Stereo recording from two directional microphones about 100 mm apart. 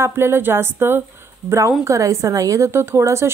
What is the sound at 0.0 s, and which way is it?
Speech, 25° right (ahead or behind).